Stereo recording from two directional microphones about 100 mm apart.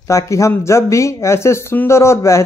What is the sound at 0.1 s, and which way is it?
Speech, 30° left (ahead or behind).